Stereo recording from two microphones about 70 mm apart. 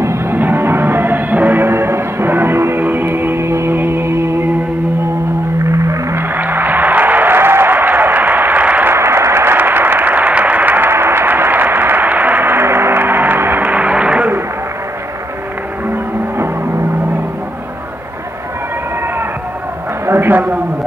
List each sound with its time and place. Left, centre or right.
0.0 s music: right
5.7 s music: right
6.3 s a sound: right
8.9 s applause: right; by 14.3 s centre
15.9 s vehicle: right
20.1 s a sound: right